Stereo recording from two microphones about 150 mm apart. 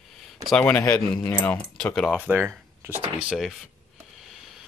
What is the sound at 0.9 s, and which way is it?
Speech, 25° left (ahead or behind).